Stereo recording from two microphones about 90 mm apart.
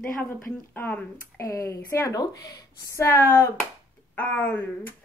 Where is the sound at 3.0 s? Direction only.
25° left (ahead or behind).